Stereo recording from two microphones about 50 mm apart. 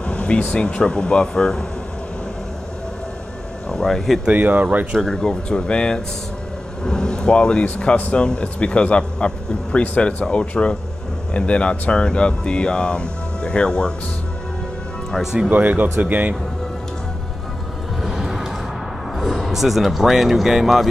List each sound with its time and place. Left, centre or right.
0.0 s speech: left
3.6 s speech: centre
4.3 s speech: right
4.9 s speech: centre
15.5 s speech: right
18.0 s music: centre
19.1 s speech: centre